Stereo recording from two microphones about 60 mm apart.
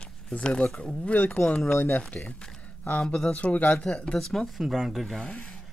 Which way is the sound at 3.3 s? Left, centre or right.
Left.